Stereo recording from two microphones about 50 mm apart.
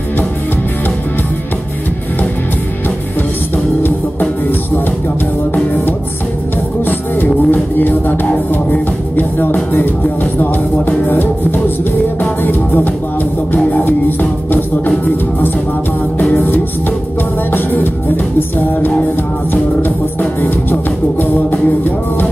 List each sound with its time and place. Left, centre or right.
3.8 s music: left
6.9 s music: left
16.2 s music: left
21.2 s music: left